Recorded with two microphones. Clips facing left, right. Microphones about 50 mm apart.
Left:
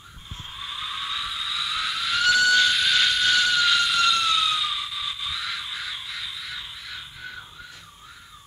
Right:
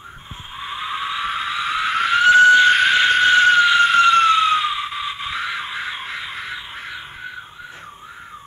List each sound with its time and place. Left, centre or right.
0.6 s vehicle: right